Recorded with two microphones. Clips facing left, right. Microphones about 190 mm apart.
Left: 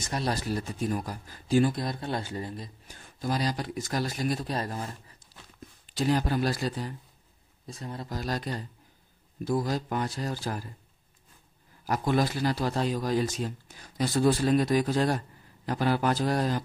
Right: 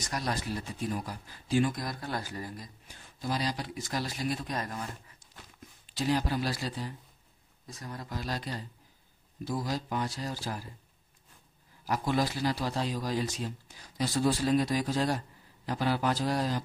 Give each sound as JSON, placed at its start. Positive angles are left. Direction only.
{"t": 0.0, "sound": "speech", "side_deg": 30}
{"t": 1.7, "sound": "speech", "side_deg": 25}
{"t": 2.9, "sound": "a man's voice", "side_deg": 45}
{"t": 4.6, "sound": "speech", "side_deg": 30}
{"t": 5.9, "sound": "a man's voice", "side_deg": 50}
{"t": 7.6, "sound": "speech", "side_deg": 25}
{"t": 8.1, "sound": "a man's voice", "side_deg": 45}
{"t": 11.8, "sound": "a man's voice", "side_deg": 50}